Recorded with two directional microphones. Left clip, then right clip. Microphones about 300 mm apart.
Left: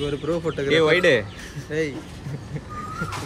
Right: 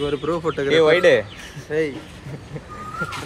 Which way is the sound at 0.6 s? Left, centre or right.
Centre.